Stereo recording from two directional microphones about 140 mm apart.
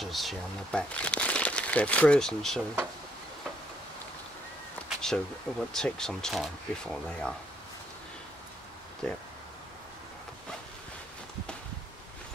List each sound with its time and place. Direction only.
0.0 s speech: centre (ahead or behind)
4.8 s cat: 5° left (ahead or behind)
5.7 s speech: 5° left (ahead or behind)
9.0 s speech: 5° left (ahead or behind)